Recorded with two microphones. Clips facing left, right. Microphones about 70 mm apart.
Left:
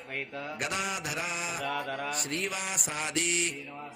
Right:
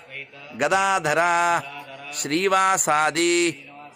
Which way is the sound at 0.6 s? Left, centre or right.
Right.